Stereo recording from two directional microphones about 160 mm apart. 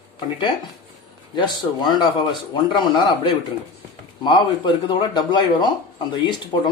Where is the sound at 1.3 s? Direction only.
25° left (ahead or behind).